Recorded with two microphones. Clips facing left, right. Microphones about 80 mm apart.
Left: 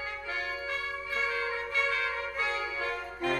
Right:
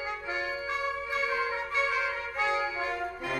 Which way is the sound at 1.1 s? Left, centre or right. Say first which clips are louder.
Even; centre.